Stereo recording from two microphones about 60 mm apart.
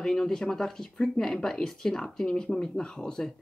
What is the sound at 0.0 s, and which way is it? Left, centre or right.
Speech, centre.